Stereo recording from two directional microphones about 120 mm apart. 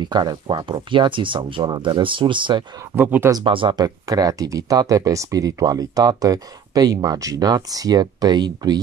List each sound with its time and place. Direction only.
0.0 s speech: 35° right (ahead or behind)
3.0 s speech: 15° right (ahead or behind)
3.4 s speech: 45° right (ahead or behind)